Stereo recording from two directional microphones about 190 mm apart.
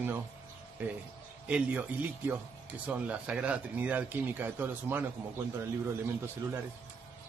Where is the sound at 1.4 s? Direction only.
5° right (ahead or behind).